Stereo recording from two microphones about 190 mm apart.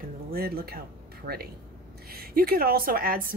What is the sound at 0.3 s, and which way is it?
Speech, 55° right (ahead or behind).